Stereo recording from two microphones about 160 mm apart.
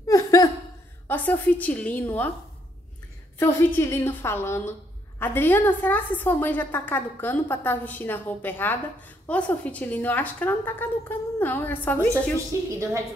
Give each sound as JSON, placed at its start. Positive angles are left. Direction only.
{"t": 0.0, "sound": "laughter", "side_deg": 20}
{"t": 1.0, "sound": "a woman's voice", "side_deg": 10}
{"t": 3.3, "sound": "a woman's voice", "side_deg": 15}